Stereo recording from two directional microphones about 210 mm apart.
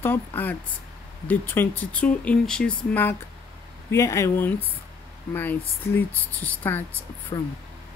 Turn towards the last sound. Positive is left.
turn(degrees=20)  # may be behind; listen again after turning